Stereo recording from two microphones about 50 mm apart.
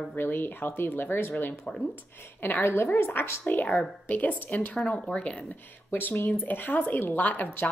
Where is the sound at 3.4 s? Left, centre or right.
Left.